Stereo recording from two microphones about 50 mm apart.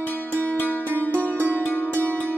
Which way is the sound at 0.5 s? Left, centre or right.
Left.